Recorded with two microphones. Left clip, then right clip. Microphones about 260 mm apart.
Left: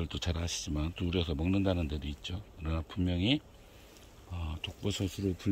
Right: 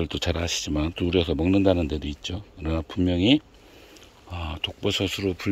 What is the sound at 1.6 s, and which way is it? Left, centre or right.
Speech, centre.